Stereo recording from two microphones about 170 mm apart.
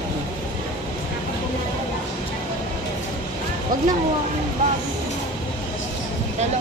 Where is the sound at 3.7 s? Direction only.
55° right (ahead or behind).